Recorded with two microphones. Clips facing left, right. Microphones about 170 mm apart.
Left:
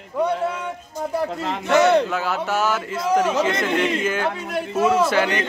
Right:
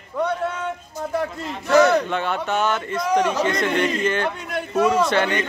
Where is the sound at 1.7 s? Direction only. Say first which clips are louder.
Even; 25° left (ahead or behind).